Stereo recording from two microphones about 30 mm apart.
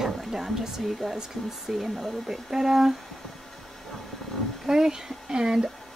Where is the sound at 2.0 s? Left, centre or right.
Centre.